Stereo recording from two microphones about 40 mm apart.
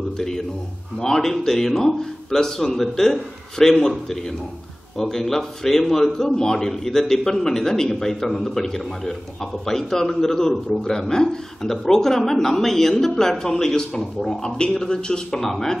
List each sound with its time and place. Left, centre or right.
0.9 s a man's voice: centre
15.3 s a man's voice: centre